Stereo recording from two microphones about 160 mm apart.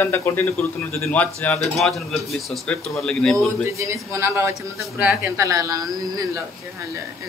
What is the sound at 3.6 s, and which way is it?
Speech, 20° right (ahead or behind).